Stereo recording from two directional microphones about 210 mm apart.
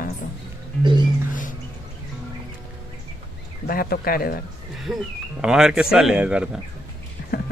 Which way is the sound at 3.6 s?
45° left (ahead or behind).